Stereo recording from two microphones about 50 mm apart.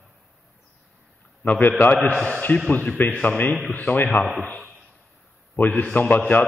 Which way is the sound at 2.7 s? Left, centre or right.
Centre.